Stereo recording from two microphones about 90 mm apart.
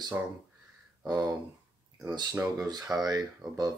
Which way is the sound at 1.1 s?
50° right (ahead or behind).